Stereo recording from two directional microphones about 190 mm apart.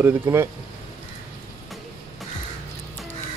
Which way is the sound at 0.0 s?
10° right (ahead or behind).